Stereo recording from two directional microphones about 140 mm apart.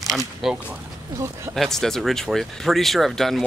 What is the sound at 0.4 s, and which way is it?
Speech, 5° right (ahead or behind).